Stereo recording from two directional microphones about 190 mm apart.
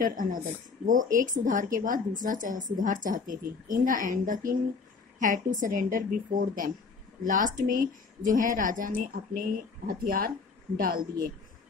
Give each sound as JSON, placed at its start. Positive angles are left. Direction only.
{"t": 0.0, "sound": "speech", "side_deg": -45}